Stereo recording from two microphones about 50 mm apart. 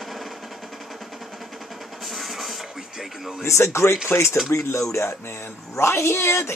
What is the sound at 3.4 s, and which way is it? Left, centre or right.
Speech, left.